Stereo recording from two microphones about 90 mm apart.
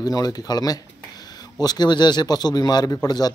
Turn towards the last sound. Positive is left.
turn(degrees=45)  # may be behind; listen again after turning